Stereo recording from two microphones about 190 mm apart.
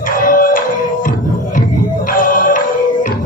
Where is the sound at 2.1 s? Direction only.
45° left (ahead or behind).